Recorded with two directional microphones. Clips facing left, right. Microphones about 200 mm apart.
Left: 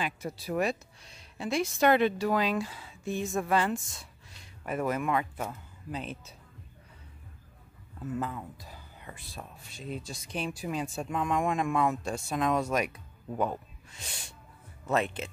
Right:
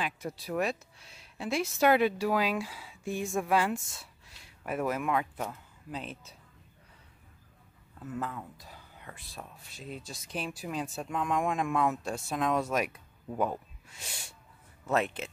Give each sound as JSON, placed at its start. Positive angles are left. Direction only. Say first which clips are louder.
{"t": 0.0, "sound": "speech", "louder": "left 1 dB", "side_deg": 0}
{"t": 8.2, "sound": "speech", "louder": "left 2 dB", "side_deg": 5}